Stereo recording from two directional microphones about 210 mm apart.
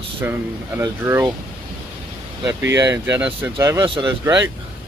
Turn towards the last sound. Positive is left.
turn(degrees=-15)  # may be behind; listen again after turning